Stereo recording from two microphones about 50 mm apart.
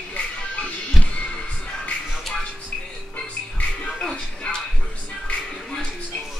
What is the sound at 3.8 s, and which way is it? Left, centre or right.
Music, centre.